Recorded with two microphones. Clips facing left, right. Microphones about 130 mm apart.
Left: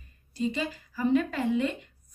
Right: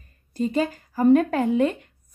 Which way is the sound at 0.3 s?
50° right (ahead or behind).